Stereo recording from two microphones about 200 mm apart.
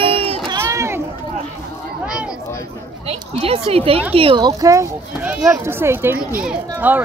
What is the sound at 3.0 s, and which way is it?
A child's voice, 30° right (ahead or behind).